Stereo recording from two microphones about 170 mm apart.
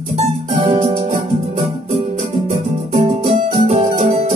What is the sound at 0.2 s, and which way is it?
Music, 45° right (ahead or behind).